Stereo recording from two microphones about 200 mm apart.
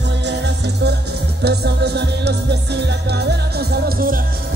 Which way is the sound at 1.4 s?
55° right (ahead or behind).